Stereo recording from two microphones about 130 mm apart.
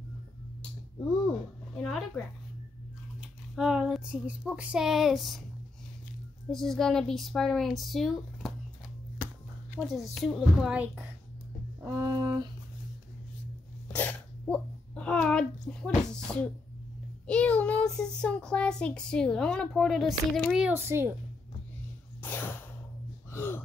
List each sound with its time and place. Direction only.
1.8 s speech: centre (ahead or behind)
3.2 s speech: 5° right (ahead or behind)
6.5 s speech: 5° left (ahead or behind)
9.8 s speech: centre (ahead or behind)
10.7 s a woman's voice: 10° right (ahead or behind)
11.8 s speech: 25° right (ahead or behind)
13.9 s a child's voice: 10° left (ahead or behind)
17.3 s a child's voice: 10° left (ahead or behind)
20.7 s a woman's voice: 20° right (ahead or behind)
22.2 s a sound: 15° left (ahead or behind)
23.3 s gasp: 15° left (ahead or behind)